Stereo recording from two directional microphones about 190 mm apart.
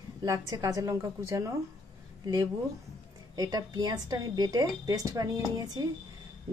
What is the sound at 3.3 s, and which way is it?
A woman's voice, 20° right (ahead or behind).